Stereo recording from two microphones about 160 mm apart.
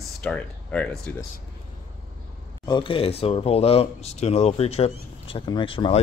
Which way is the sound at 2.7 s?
30° left (ahead or behind).